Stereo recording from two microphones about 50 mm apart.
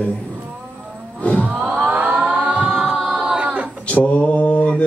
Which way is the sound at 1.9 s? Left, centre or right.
Right.